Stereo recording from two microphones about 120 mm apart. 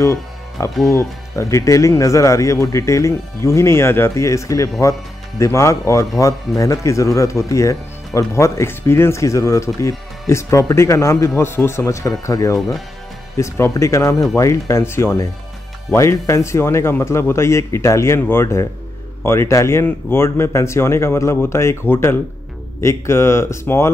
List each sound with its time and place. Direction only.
0.0 s music: 25° left (ahead or behind)
0.8 s speech: 25° left (ahead or behind)
12.5 s speech: centre (ahead or behind)
13.4 s speech: 25° left (ahead or behind)